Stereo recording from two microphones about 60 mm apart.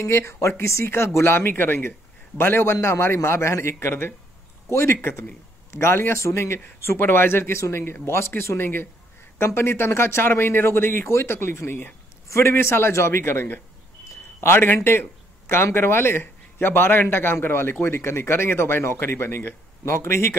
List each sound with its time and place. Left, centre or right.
0.0 s speech: left
5.7 s speech: left